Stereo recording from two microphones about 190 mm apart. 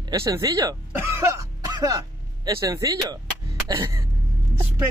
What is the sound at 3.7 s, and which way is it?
Music, 15° right (ahead or behind).